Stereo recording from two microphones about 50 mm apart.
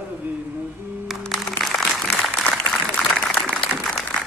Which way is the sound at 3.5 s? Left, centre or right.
Centre.